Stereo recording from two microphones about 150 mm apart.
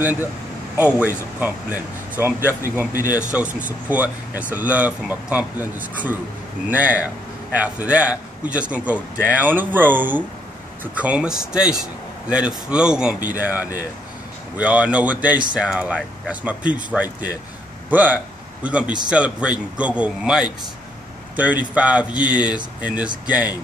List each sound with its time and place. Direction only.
0.7 s a man's voice: 10° right (ahead or behind)